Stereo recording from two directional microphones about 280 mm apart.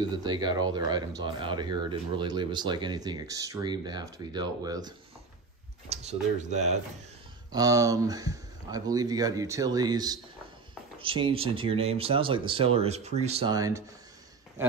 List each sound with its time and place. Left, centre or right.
0.2 s speech: centre
7.5 s speech: centre
14.6 s a sound: centre